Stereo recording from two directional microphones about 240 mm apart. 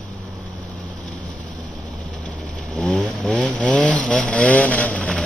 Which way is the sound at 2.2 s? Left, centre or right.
Centre.